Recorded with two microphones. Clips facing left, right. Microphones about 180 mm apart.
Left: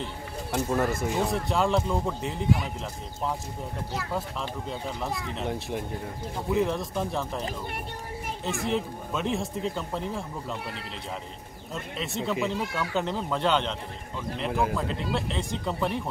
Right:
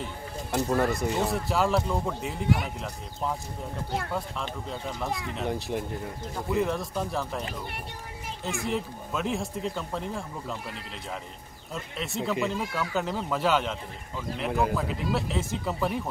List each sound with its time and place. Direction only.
0.5 s speech: centre (ahead or behind)
4.1 s speech: centre (ahead or behind)
8.5 s speech: centre (ahead or behind)
11.7 s speech: centre (ahead or behind)